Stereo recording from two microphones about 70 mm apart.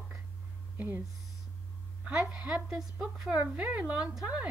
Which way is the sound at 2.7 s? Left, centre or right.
Centre.